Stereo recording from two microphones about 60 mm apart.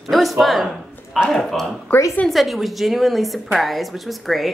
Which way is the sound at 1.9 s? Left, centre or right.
Left.